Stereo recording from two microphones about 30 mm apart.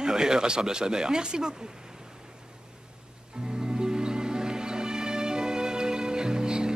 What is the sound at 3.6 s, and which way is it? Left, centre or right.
Music, right.